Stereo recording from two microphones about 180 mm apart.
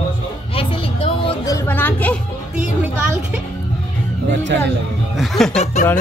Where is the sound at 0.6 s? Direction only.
30° left (ahead or behind).